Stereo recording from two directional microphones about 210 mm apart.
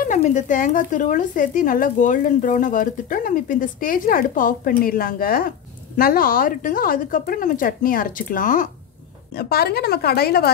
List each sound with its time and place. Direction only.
0.0 s a woman's voice: 35° left (ahead or behind)